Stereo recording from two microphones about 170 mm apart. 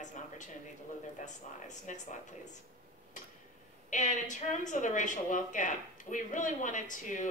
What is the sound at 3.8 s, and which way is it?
Speech, 45° left (ahead or behind).